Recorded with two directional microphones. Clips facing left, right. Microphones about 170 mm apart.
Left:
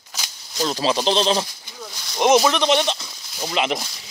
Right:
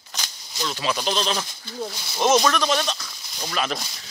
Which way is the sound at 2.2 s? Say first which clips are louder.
Left 3 dB; 15° left (ahead or behind).